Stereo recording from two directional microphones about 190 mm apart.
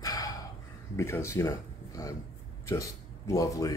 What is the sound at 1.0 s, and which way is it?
Speech, 15° left (ahead or behind).